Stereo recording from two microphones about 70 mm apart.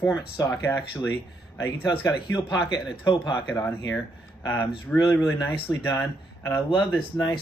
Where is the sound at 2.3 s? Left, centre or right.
Left.